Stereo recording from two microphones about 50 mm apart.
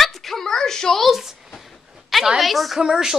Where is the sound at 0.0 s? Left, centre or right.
Centre.